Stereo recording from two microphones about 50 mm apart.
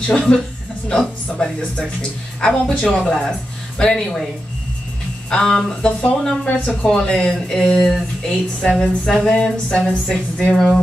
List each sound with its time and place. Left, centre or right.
0.0 s speech: centre
5.3 s speech: centre